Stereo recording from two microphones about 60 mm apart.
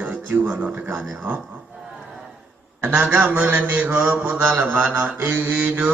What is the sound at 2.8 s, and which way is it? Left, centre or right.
Mantra, right.